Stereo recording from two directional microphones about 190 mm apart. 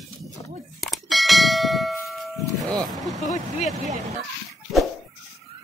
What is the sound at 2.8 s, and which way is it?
Speech, centre (ahead or behind).